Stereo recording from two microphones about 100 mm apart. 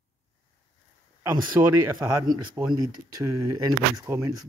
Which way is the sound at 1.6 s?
30° right (ahead or behind).